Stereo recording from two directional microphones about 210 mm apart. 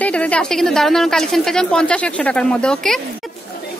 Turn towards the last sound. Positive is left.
turn(degrees=5)  # may be behind; listen again after turning